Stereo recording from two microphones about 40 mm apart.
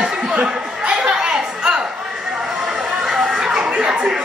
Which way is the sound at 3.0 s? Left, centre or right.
Centre.